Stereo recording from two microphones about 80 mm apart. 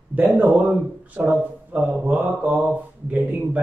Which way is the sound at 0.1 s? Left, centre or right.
Right.